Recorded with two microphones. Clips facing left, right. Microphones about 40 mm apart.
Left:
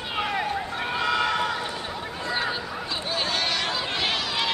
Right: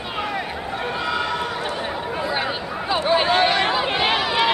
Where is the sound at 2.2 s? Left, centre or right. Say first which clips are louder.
Right 2 dB; centre.